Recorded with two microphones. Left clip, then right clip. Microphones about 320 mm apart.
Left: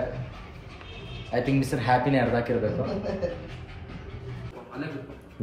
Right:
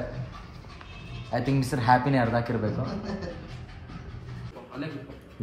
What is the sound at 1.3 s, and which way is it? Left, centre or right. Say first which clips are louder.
Speech: left 2 dB; centre.